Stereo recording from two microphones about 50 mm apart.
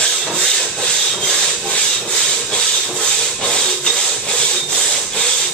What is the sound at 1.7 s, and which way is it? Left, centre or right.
Rub, centre.